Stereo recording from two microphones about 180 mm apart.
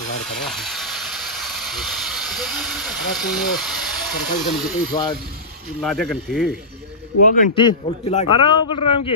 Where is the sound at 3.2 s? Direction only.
Centre (ahead or behind).